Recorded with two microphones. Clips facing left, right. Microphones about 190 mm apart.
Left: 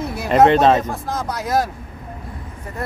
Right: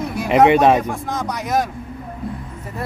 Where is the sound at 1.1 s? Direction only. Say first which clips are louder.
Even; centre (ahead or behind).